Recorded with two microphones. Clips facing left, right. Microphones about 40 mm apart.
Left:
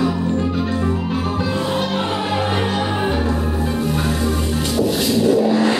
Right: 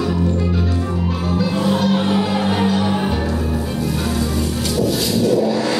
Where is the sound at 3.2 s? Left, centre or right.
Left.